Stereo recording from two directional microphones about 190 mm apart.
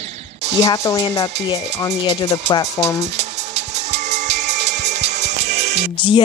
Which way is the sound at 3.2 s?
35° right (ahead or behind).